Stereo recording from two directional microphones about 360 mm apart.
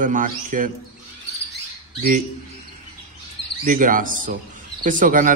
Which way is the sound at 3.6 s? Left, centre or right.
Right.